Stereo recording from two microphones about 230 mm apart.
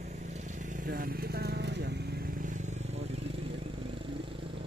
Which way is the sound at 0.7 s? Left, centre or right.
Right.